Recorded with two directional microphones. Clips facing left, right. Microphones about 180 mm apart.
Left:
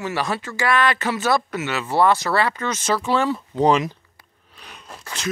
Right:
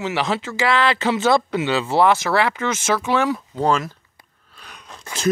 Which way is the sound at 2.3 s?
10° right (ahead or behind).